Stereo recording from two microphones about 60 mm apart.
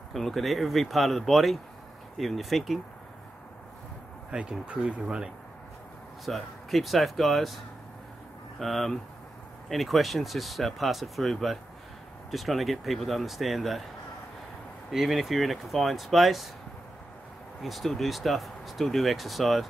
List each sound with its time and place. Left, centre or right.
0.1 s speech: centre
4.3 s speech: centre
6.2 s speech: centre
14.9 s speech: centre
17.6 s speech: centre